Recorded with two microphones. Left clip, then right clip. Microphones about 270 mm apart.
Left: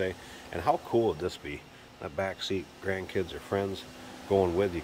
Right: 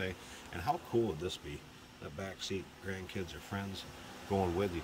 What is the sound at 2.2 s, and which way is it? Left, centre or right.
Speech, centre.